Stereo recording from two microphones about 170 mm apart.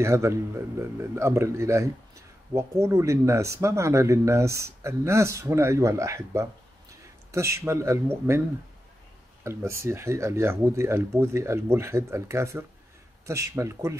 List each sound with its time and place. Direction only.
0.0 s speech: 15° right (ahead or behind)
9.4 s speech: 15° right (ahead or behind)